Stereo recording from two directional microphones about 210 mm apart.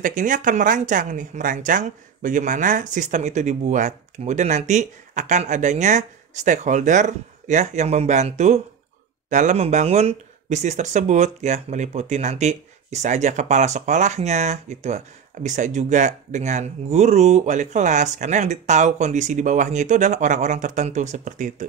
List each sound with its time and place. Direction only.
0.0 s speech: 40° right (ahead or behind)